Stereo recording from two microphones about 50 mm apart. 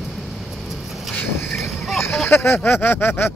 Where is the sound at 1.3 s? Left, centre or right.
Left.